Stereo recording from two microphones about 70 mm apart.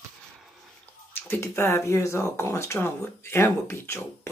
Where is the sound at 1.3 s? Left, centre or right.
Left.